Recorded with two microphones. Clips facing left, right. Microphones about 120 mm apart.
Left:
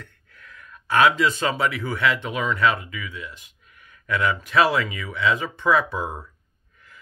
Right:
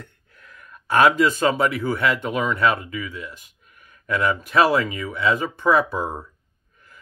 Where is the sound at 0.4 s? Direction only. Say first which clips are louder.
Even; 45° right (ahead or behind).